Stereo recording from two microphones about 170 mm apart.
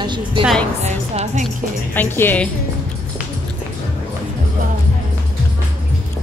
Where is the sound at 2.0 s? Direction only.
10° left (ahead or behind).